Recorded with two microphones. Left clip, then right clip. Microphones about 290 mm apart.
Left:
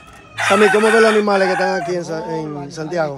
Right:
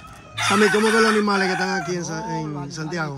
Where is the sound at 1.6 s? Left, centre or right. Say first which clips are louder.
Left 6 dB; centre.